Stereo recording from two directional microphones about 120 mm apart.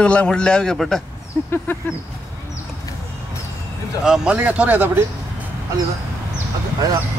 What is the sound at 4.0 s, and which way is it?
Speech, 5° right (ahead or behind).